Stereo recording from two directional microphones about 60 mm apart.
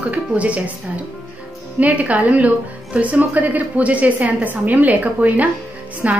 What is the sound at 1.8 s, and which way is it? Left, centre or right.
A woman's voice, right.